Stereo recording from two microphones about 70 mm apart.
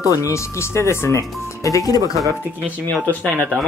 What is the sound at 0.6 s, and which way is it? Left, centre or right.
Speech, left.